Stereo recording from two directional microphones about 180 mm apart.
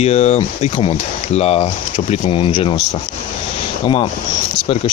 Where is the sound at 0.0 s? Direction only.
40° left (ahead or behind).